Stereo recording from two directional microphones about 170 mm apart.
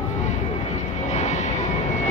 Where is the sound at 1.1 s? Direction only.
45° left (ahead or behind).